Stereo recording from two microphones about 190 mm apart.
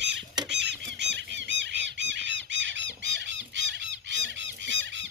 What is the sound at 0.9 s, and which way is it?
Squawk, 70° right (ahead or behind).